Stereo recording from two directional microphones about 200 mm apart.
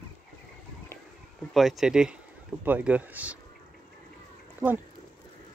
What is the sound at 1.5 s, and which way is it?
Speech, centre (ahead or behind).